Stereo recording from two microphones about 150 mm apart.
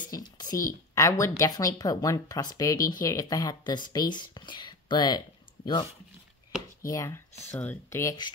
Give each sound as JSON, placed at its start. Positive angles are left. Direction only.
{"t": 0.1, "sound": "a sound", "side_deg": 25}
{"t": 0.9, "sound": "speech", "side_deg": 20}
{"t": 6.9, "sound": "speech", "side_deg": 20}